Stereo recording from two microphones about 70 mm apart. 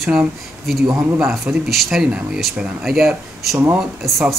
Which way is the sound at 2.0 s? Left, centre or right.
Centre.